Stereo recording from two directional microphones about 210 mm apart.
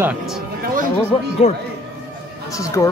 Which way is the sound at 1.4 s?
30° left (ahead or behind).